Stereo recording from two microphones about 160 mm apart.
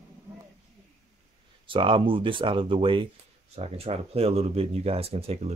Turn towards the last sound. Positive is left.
turn(degrees=-40)  # may be behind; listen again after turning